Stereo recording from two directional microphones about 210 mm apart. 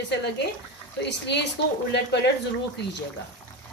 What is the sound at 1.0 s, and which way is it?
A woman's voice, 55° left (ahead or behind).